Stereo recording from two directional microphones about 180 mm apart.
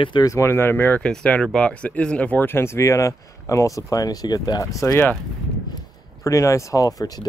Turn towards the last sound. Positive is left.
turn(degrees=20)  # may be behind; listen again after turning